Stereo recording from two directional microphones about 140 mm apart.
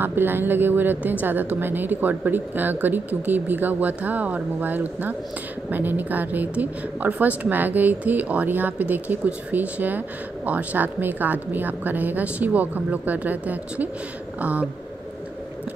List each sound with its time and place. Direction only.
0.0 s a woman's voice: 15° right (ahead or behind)